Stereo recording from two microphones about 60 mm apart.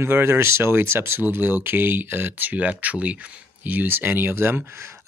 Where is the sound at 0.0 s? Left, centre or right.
Right.